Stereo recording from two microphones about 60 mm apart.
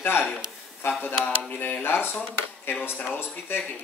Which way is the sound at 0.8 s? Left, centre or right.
Left.